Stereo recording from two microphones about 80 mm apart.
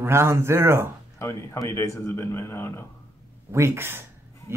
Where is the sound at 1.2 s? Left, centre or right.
Left.